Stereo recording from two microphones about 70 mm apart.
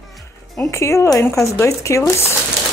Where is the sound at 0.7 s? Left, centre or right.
Left.